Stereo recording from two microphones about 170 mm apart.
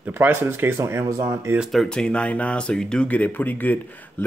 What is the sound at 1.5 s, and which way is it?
Speech, centre (ahead or behind).